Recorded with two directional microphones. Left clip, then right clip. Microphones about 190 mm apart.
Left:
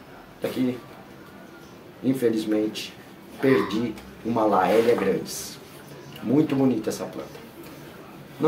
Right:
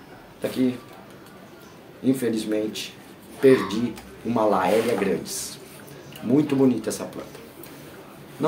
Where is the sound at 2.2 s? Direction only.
20° right (ahead or behind).